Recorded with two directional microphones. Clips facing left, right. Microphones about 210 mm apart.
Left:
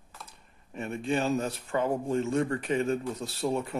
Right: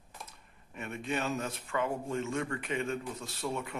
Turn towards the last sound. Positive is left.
turn(degrees=35)  # may be behind; listen again after turning